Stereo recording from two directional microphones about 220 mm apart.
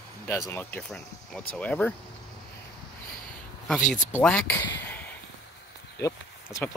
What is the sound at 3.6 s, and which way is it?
Speech, centre (ahead or behind).